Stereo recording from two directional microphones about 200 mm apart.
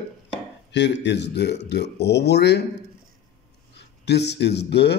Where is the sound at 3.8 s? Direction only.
55° left (ahead or behind).